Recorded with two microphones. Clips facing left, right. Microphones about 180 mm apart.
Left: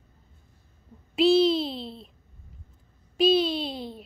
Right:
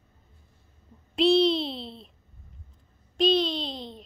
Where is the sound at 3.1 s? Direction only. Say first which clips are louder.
Left 2 dB; 5° left (ahead or behind).